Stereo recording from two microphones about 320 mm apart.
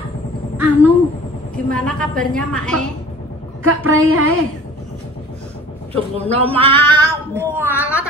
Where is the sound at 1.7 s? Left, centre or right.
Centre.